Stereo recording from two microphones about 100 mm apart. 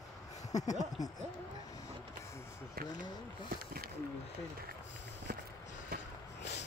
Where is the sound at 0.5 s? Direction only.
40° left (ahead or behind).